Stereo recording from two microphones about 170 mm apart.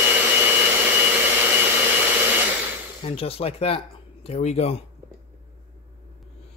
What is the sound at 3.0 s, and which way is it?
Speech, 35° left (ahead or behind).